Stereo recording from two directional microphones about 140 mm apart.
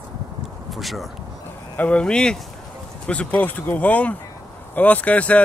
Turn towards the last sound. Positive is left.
turn(degrees=10)  # may be behind; listen again after turning